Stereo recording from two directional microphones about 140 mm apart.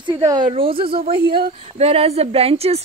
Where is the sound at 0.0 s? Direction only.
25° right (ahead or behind).